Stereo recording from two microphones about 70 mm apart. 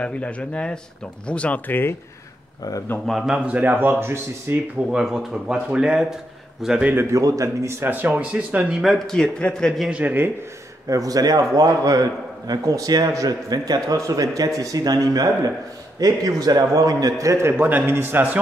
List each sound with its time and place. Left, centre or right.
0.0 s speech: centre
1.7 s speech: left
2.6 s speech: left
3.1 s a man's voice: centre
3.3 s speech: right
4.9 s a man's voice: centre
7.0 s speech: right
8.1 s speech: centre
8.8 s speech: centre
9.8 s speech: centre
10.9 s a man's voice: right